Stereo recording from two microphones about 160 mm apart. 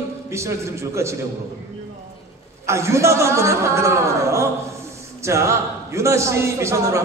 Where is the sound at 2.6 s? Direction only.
15° right (ahead or behind).